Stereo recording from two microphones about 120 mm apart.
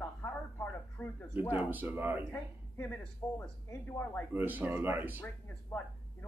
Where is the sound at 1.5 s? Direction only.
15° right (ahead or behind).